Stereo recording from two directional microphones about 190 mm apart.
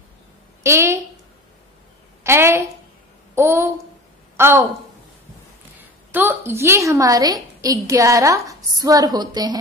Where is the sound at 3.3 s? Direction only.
15° right (ahead or behind).